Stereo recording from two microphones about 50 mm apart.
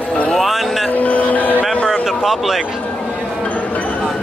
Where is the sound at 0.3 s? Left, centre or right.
Centre.